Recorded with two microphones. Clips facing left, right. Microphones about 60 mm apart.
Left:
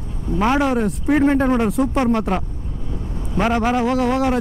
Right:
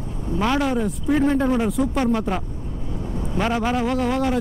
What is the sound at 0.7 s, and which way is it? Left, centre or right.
Speech, left.